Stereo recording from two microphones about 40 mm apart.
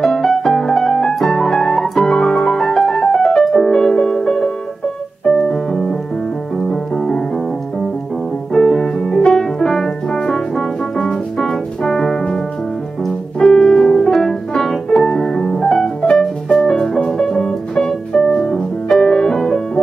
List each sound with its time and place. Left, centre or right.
0.1 s piano: centre
6.5 s music: centre
8.5 s music: centre
13.4 s piano: centre
14.1 s music: centre
15.0 s music: centre